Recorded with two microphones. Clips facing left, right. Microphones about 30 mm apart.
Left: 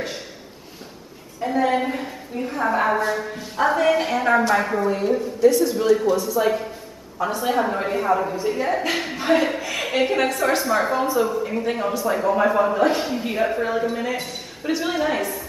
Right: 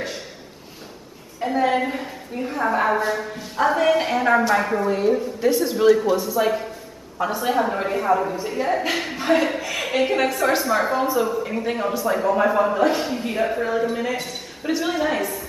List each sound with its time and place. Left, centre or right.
1.4 s a man's voice: centre
5.4 s a man's voice: centre